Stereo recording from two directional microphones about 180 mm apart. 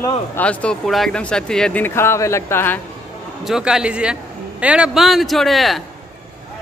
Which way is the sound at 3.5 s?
5° right (ahead or behind).